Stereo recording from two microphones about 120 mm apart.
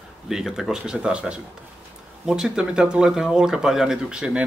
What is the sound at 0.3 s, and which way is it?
Speech, 5° right (ahead or behind).